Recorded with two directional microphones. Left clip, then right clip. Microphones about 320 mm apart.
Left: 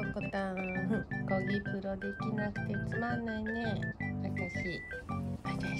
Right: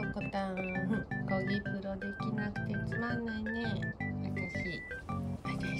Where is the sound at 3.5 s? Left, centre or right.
Left.